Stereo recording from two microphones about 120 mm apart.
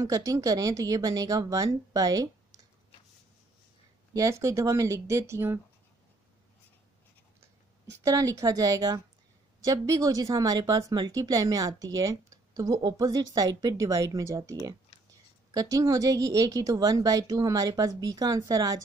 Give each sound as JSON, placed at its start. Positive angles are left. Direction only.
{"t": 0.0, "sound": "speech", "side_deg": -30}
{"t": 4.1, "sound": "speech", "side_deg": -25}
{"t": 8.0, "sound": "a woman's voice", "side_deg": -30}